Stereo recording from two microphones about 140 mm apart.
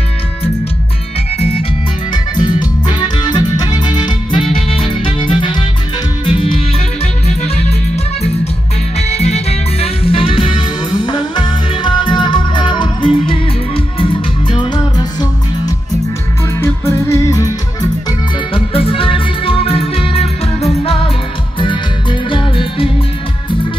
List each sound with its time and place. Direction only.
2.3 s music: 35° left (ahead or behind)
7.2 s music: 50° left (ahead or behind); by 15.2 s 30° left (ahead or behind)
16.5 s music: 20° left (ahead or behind)
18.5 s music: 40° left (ahead or behind)
22.3 s music: 40° left (ahead or behind)